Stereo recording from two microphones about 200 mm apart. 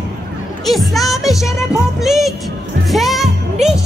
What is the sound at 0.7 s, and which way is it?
Speech, centre (ahead or behind).